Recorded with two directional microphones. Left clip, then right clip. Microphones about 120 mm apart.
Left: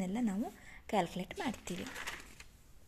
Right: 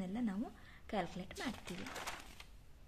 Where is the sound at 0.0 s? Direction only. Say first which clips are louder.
Left 5 dB; 40° left (ahead or behind).